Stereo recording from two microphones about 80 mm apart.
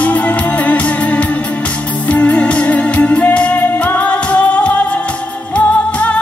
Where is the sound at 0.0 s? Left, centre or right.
Left.